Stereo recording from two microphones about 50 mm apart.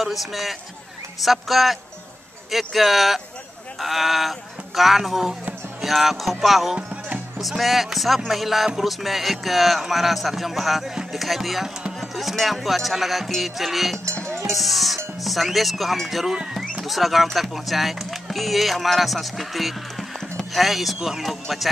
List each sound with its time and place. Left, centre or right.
0.0 s speech: centre
14.2 s music: right
14.5 s speech: centre